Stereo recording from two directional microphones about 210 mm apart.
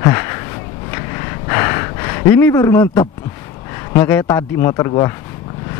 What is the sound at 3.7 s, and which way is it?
A man's voice, 15° left (ahead or behind).